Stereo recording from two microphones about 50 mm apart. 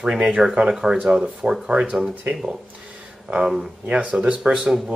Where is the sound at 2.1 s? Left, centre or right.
Right.